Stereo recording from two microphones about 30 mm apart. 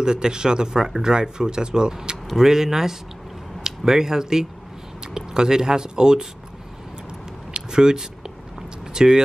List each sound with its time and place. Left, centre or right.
0.0 s speech: right
2.3 s speech: centre
7.5 s a sound: right